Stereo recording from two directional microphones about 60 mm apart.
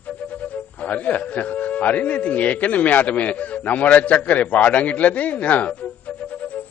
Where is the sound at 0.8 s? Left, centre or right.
Left.